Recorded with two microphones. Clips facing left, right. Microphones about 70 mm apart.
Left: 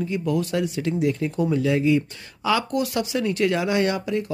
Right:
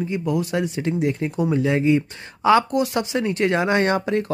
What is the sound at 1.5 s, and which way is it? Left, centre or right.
Speech, right.